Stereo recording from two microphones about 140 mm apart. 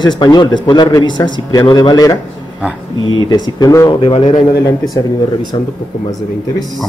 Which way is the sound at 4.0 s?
40° left (ahead or behind).